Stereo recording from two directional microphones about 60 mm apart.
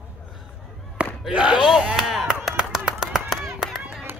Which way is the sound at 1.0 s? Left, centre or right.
Right.